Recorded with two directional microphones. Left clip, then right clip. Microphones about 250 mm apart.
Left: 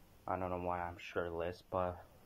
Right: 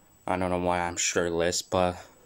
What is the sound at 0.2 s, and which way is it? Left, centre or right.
Speech, right.